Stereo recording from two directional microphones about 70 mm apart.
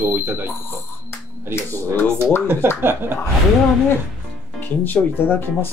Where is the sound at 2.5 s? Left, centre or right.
Right.